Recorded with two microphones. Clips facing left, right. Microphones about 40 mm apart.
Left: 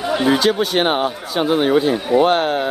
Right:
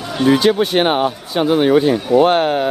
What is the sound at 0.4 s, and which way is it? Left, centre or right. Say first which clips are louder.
Speech: right 2 dB; right.